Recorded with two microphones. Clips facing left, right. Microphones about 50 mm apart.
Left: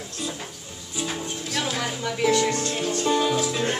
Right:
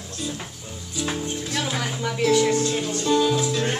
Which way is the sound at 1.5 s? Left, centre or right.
Centre.